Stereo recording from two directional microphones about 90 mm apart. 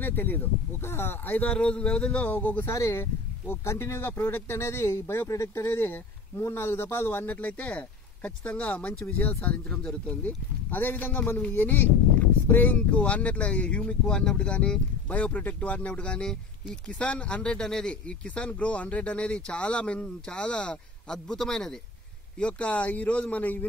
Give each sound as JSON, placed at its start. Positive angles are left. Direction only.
{"t": 0.0, "sound": "speech", "side_deg": 20}
{"t": 2.7, "sound": "speech", "side_deg": 35}